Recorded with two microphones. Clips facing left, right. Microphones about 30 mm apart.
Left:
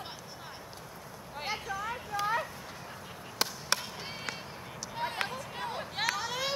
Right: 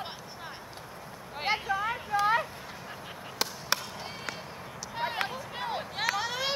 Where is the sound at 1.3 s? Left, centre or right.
Right.